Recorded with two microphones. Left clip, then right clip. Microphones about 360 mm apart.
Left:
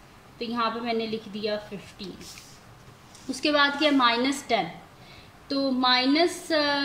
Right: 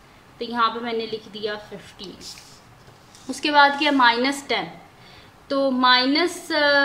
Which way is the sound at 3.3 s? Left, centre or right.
Right.